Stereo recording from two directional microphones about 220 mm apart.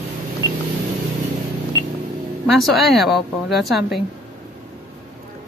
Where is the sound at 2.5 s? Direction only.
Centre (ahead or behind).